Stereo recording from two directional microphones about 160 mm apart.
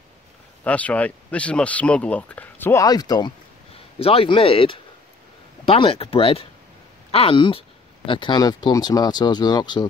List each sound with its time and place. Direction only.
0.7 s speech: 10° left (ahead or behind); by 3.3 s 25° left (ahead or behind)
4.0 s speech: 35° left (ahead or behind)